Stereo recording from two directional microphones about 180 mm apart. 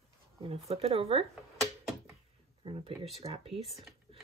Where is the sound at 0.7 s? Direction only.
30° right (ahead or behind).